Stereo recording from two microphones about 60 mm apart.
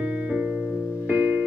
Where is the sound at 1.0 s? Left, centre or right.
Right.